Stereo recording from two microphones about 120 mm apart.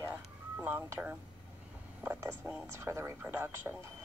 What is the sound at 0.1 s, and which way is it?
Ice cream truck, 15° right (ahead or behind).